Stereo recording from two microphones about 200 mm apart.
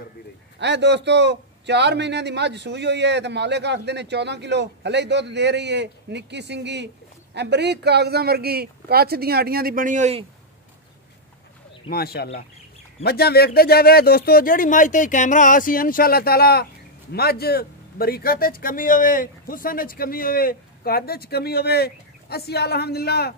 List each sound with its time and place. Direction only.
0.6 s a man's voice: 60° right (ahead or behind); by 10.2 s 35° right (ahead or behind)
11.9 s speech: 50° left (ahead or behind)